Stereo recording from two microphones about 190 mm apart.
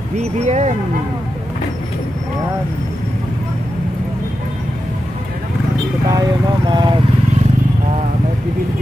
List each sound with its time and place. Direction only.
0.4 s speech: 35° right (ahead or behind)
6.0 s speech: 20° right (ahead or behind)